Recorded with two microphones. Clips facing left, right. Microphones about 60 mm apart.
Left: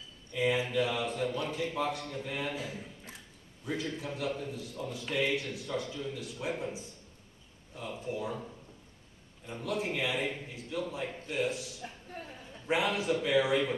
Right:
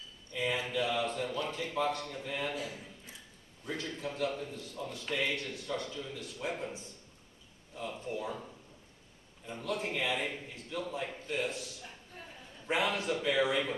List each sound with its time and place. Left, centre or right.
0.3 s a man's voice: centre
9.5 s a man's voice: centre
11.8 s a sound: centre
12.6 s a man's voice: centre